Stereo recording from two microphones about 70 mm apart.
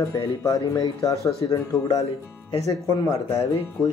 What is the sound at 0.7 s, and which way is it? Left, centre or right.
Speech, left.